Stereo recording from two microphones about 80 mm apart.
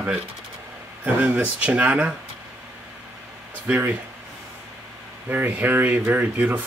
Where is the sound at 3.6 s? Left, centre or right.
Centre.